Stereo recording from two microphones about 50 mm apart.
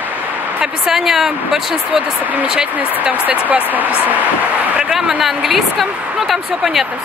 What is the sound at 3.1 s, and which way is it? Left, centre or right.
Speech, right.